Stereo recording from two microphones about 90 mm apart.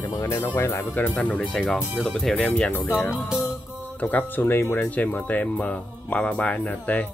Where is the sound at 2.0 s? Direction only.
Centre (ahead or behind).